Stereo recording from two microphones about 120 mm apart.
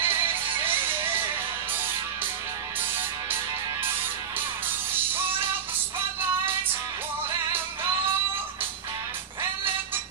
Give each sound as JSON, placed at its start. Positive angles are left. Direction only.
{"t": 0.0, "sound": "music", "side_deg": -20}
{"t": 4.9, "sound": "music", "side_deg": -15}